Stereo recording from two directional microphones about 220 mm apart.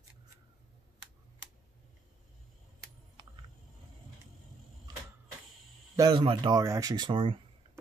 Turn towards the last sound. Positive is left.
turn(degrees=-20)  # may be behind; listen again after turning